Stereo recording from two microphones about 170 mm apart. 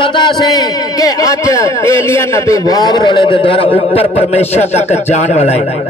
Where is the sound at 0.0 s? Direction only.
25° left (ahead or behind).